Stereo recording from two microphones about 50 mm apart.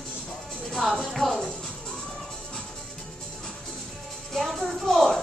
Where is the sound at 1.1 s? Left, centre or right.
Centre.